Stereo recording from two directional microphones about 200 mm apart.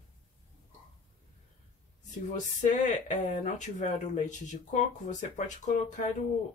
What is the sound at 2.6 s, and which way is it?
Speech, 35° left (ahead or behind).